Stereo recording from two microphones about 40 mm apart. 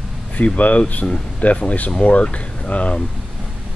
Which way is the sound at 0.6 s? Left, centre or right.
Left.